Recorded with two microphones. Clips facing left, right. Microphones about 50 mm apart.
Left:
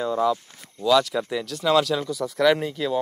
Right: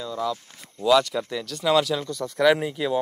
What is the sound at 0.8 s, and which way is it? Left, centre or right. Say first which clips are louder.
Speech: even; centre.